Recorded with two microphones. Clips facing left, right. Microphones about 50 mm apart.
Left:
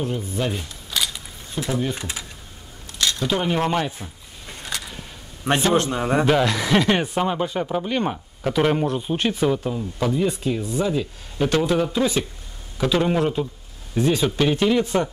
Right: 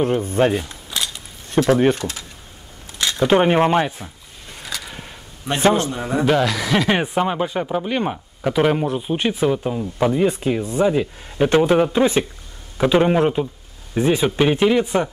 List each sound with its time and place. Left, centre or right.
0.0 s speech: right
0.8 s a sound: centre
1.5 s speech: right
2.0 s speech: centre
3.0 s a sound: centre
3.3 s speech: right
5.8 s a man's voice: left
6.2 s speech: centre
6.9 s speech: centre